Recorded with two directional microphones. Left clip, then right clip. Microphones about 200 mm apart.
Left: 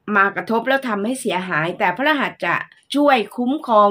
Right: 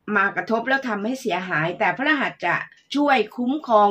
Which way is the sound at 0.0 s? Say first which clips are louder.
Left 4 dB; 50° left (ahead or behind).